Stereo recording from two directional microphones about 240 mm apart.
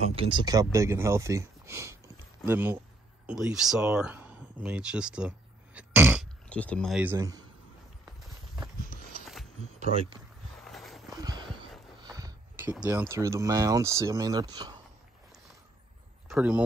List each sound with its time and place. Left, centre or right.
0.1 s speech: right; by 6.2 s centre
6.5 s speech: centre
10.6 s a sound: centre
11.1 s a sound: centre
12.0 s speech: centre
16.3 s a man's voice: centre